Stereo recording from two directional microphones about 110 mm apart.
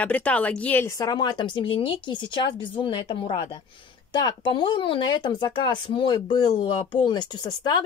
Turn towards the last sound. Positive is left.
turn(degrees=40)  # may be behind; listen again after turning